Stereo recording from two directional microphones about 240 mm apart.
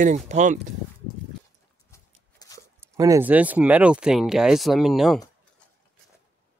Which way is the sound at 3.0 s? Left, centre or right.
Centre.